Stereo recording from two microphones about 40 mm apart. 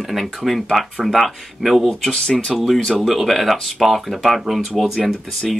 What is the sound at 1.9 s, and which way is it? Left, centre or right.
Speech, centre.